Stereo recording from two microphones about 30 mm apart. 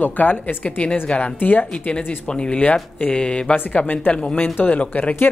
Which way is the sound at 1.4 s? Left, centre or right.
Left.